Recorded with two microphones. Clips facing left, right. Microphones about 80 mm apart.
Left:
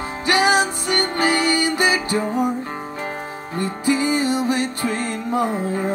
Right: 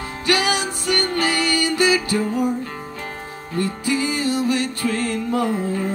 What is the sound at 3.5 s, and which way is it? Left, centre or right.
Music, left.